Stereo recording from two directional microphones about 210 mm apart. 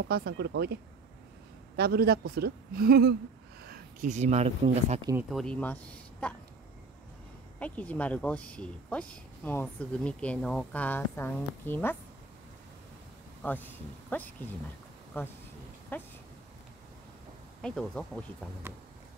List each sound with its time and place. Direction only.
0.1 s speech: 50° right (ahead or behind)
1.8 s speech: 45° right (ahead or behind); by 5.1 s 30° right (ahead or behind)
5.1 s speech: centre (ahead or behind)
7.5 s speech: 5° left (ahead or behind)
13.4 s speech: 10° left (ahead or behind)
17.6 s speech: 5° left (ahead or behind)